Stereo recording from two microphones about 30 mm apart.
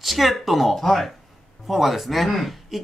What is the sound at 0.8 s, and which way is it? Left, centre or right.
Speech, centre.